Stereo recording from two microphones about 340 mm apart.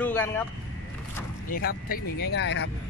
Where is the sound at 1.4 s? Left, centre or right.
Left.